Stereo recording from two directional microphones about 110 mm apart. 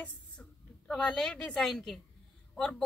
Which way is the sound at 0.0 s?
10° left (ahead or behind).